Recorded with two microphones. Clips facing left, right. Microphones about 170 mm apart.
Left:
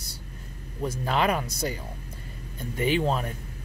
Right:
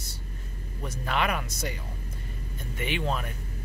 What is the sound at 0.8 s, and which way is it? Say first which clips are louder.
Speech: left 4 dB; 35° left (ahead or behind).